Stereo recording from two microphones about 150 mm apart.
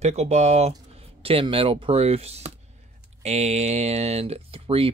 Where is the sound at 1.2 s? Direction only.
40° right (ahead or behind).